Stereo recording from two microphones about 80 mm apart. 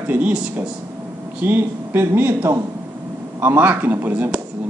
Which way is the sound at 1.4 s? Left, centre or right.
Right.